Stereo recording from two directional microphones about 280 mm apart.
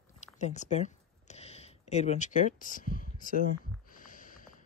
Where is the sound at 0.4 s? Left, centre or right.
Left.